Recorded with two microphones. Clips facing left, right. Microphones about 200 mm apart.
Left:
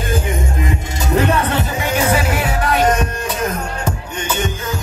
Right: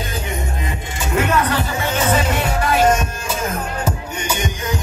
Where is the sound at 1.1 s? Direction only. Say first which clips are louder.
Left 2 dB; 35° left (ahead or behind).